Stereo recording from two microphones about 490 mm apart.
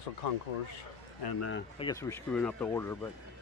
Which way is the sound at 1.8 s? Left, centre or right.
Centre.